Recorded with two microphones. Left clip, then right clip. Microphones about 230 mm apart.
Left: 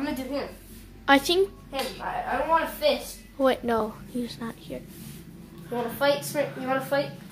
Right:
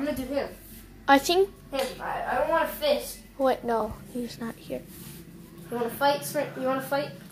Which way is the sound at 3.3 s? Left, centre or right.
Centre.